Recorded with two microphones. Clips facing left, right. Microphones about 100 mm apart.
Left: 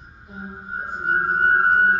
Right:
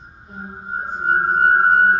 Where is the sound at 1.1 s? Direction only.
30° right (ahead or behind).